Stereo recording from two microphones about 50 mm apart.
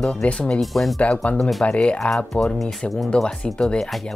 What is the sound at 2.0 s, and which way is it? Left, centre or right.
Speech, centre.